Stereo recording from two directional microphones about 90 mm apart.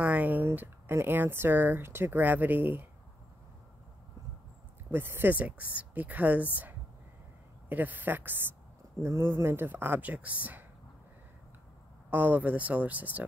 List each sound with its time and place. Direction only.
0.0 s speech: 15° right (ahead or behind)
4.9 s speech: 25° right (ahead or behind)
12.1 s speech: 20° right (ahead or behind)